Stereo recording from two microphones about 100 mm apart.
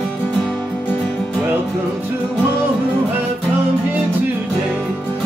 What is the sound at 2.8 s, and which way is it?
Music, 20° right (ahead or behind).